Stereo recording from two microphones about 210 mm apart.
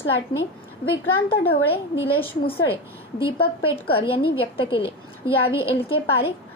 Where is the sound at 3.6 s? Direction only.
25° left (ahead or behind).